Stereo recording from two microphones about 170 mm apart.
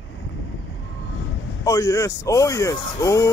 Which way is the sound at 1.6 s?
20° left (ahead or behind).